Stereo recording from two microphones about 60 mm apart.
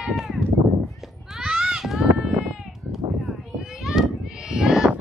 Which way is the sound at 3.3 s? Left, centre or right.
Centre.